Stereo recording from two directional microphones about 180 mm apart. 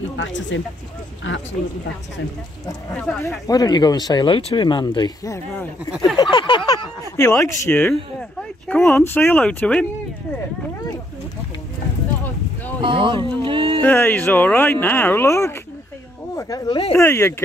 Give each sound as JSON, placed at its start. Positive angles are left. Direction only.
{"t": 0.2, "sound": "speech", "side_deg": 90}
{"t": 3.1, "sound": "speech", "side_deg": 10}
{"t": 7.2, "sound": "speech", "side_deg": 15}
{"t": 12.8, "sound": "speech", "side_deg": -30}
{"t": 13.7, "sound": "speech", "side_deg": 10}
{"t": 16.9, "sound": "speech", "side_deg": 15}